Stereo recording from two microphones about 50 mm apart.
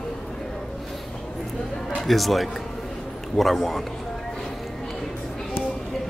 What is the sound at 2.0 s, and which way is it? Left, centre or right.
Speech, centre.